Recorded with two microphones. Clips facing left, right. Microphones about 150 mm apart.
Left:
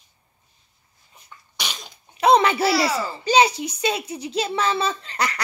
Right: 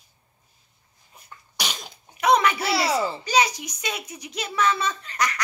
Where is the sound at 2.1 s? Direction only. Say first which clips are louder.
Left 3 dB; 30° left (ahead or behind).